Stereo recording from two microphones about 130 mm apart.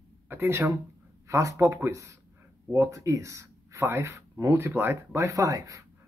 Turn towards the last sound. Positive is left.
turn(degrees=-25)  # may be behind; listen again after turning